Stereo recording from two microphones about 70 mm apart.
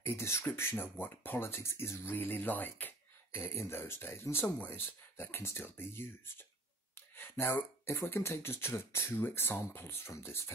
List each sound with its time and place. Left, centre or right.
0.0 s speech: left
3.3 s speech: left
7.2 s a sound: left
7.5 s speech: left